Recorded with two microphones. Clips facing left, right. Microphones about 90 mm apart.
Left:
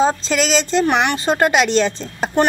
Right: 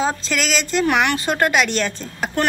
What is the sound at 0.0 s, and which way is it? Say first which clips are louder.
Speech: left 5 dB; 30° left (ahead or behind).